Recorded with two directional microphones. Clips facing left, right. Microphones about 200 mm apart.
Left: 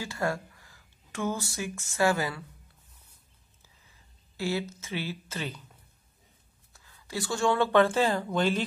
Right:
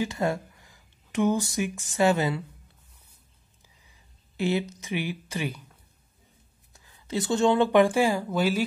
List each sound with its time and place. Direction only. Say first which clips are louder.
0.0 s speech: right 4 dB; 20° right (ahead or behind)
4.4 s speech: right 4 dB; 20° right (ahead or behind)
6.7 s speech: right 6 dB; 20° right (ahead or behind)